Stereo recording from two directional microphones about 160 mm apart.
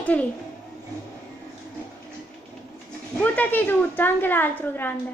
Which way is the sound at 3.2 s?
10° left (ahead or behind).